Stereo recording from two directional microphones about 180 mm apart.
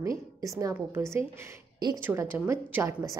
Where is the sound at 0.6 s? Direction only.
15° right (ahead or behind).